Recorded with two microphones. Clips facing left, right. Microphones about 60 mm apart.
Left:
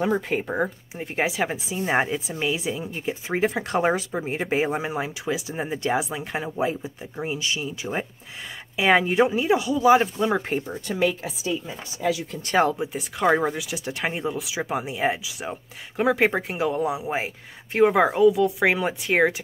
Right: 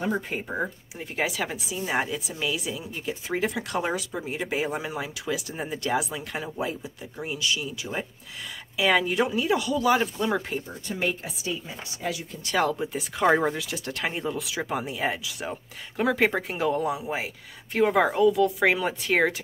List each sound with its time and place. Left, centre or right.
0.9 s a woman's voice: left
10.9 s a woman's voice: left
12.4 s a woman's voice: left
12.7 s speech: centre
16.9 s a woman's voice: left